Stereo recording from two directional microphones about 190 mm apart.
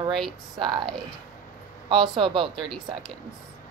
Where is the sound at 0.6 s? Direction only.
25° right (ahead or behind).